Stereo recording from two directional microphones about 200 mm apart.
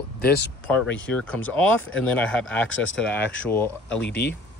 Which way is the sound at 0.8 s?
5° left (ahead or behind).